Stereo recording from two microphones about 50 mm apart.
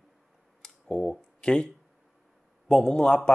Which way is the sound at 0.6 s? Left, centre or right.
Centre.